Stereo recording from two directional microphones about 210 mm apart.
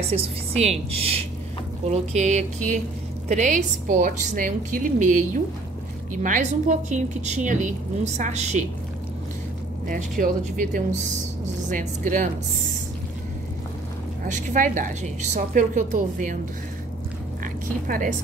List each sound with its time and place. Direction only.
0.1 s a woman's voice: 30° right (ahead or behind)
9.8 s a woman's voice: 40° right (ahead or behind)
14.2 s a woman's voice: 40° right (ahead or behind)
17.8 s a woman's voice: 40° right (ahead or behind)